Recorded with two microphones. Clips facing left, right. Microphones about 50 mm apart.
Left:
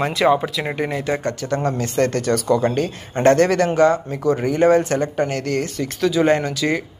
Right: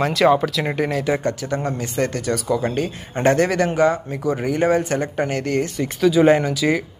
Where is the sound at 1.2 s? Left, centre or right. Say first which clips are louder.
Left 1 dB; centre.